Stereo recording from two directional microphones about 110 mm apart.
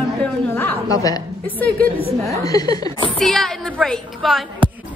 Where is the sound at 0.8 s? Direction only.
35° left (ahead or behind).